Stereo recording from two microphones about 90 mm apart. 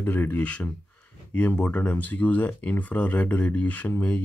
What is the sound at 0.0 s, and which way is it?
Speech, 20° left (ahead or behind).